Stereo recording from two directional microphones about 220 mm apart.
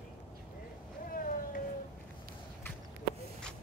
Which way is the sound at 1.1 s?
40° left (ahead or behind).